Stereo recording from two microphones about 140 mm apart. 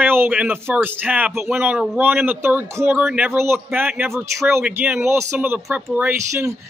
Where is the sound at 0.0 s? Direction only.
15° right (ahead or behind).